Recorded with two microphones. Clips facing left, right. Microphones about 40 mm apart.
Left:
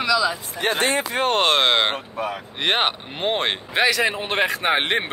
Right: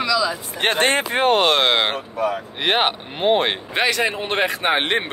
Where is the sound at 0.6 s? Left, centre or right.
Right.